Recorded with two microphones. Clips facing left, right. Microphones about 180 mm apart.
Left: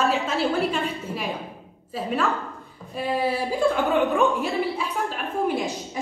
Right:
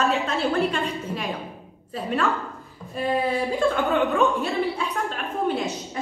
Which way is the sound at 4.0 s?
15° left (ahead or behind).